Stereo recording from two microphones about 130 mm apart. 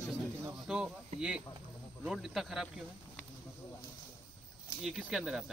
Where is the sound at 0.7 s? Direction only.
5° right (ahead or behind).